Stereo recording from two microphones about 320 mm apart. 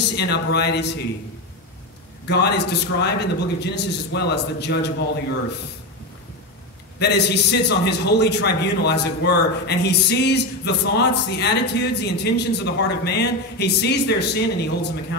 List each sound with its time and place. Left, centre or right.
0.1 s a man's voice: left
2.2 s a man's voice: left
7.0 s a man's voice: left